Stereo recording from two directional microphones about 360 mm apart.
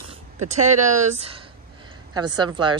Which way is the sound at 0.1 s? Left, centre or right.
Centre.